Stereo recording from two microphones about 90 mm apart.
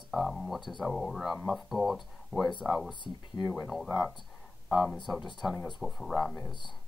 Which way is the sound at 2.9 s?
60° left (ahead or behind).